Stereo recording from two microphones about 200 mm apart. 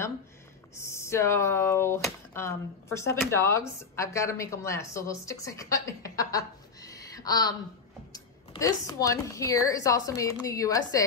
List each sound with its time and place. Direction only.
0.7 s a woman's voice: 15° left (ahead or behind)